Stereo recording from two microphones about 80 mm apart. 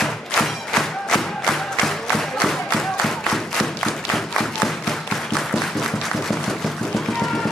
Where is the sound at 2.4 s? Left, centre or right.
Centre.